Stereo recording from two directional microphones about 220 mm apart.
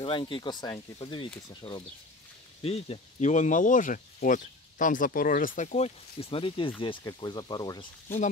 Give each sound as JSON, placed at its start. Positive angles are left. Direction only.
{"t": 0.0, "sound": "speech", "side_deg": 20}